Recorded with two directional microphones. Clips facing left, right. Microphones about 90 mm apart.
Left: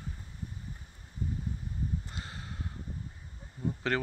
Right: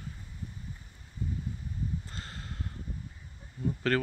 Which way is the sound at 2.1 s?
15° left (ahead or behind).